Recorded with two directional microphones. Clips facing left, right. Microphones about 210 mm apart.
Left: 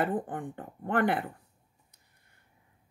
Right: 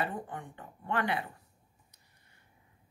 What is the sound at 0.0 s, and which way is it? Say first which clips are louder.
Speech: left 6 dB; 50° left (ahead or behind).